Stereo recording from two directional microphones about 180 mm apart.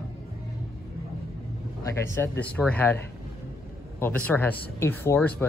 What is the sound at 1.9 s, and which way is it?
Speech, 15° left (ahead or behind).